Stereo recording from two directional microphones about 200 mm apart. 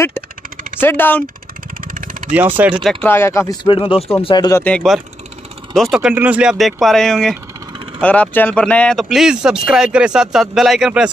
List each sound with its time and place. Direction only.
0.7 s speech: 10° left (ahead or behind)
1.9 s vehicle: 40° right (ahead or behind)
2.3 s speech: 10° right (ahead or behind)